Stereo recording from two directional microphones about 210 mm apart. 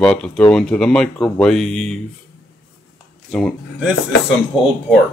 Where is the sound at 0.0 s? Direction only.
5° left (ahead or behind).